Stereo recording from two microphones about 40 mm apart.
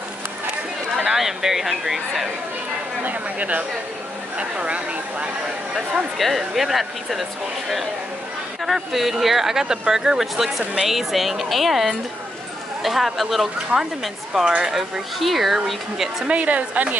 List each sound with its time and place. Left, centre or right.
1.0 s speech: centre
3.0 s a woman's voice: right
6.1 s speech: centre
8.7 s speech: centre
16.3 s a woman's voice: right